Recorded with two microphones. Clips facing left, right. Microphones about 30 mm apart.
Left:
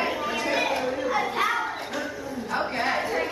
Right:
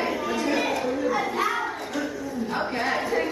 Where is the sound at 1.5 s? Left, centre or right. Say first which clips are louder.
Even; centre.